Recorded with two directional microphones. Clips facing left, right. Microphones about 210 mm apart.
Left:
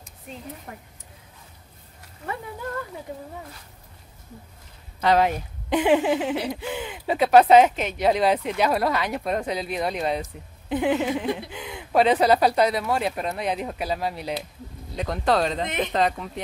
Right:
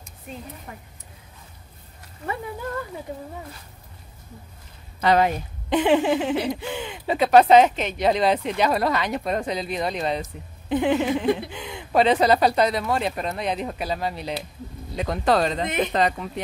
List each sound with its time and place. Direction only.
0.7 s speech: 55° left (ahead or behind)
5.0 s speech: centre (ahead or behind)